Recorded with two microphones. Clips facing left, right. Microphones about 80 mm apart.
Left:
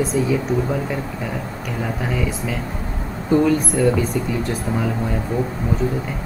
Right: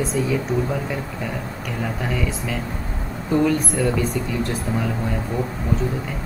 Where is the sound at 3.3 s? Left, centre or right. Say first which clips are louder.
Left 3 dB; centre.